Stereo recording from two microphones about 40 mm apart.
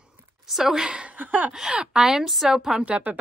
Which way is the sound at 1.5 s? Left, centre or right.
Right.